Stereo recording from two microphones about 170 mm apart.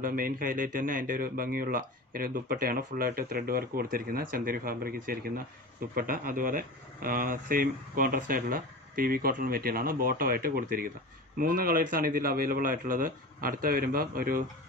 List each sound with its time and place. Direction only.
0.0 s speech: 55° right (ahead or behind)